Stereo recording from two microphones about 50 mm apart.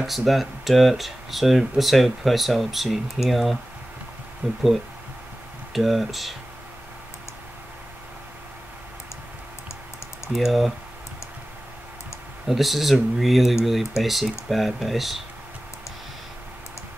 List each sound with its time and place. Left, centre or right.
0.0 s speech: centre
4.4 s speech: right
5.7 s speech: centre
10.3 s speech: centre
12.4 s speech: centre